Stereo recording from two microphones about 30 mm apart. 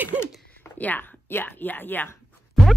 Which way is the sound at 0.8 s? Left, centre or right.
Left.